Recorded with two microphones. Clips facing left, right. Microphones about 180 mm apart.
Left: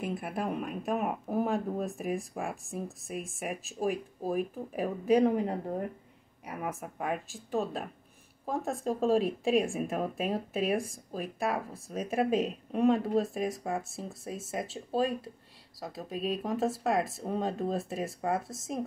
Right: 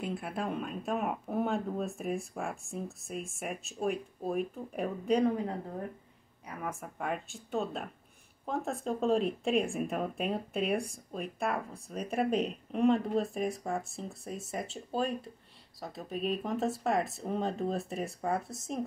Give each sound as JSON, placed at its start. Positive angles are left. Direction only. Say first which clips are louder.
{"t": 0.4, "sound": "speech", "louder": "left 2 dB", "side_deg": 0}
{"t": 5.3, "sound": "speech", "louder": "left 4 dB", "side_deg": 15}
{"t": 6.8, "sound": "speech", "louder": "left 2 dB", "side_deg": 5}